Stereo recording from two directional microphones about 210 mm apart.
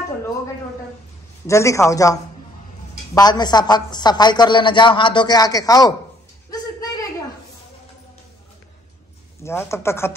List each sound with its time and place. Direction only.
1.5 s speech: 15° left (ahead or behind)
3.2 s a woman's voice: 20° left (ahead or behind)
6.5 s a sound: 15° left (ahead or behind)
9.4 s speech: 10° left (ahead or behind)